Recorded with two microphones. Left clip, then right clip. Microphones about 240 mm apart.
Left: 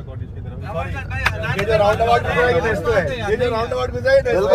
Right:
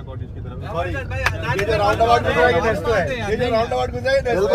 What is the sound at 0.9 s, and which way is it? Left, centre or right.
Speech, right.